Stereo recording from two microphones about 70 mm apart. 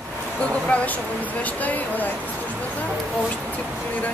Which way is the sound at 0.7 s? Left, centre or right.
Left.